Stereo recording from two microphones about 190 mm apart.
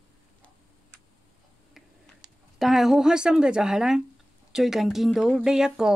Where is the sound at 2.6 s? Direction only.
Centre (ahead or behind).